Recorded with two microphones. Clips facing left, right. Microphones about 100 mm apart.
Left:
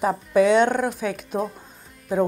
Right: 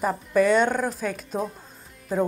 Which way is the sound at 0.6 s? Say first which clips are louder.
Left 3 dB; centre (ahead or behind).